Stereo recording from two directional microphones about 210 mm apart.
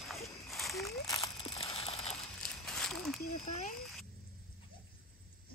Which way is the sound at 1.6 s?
30° left (ahead or behind).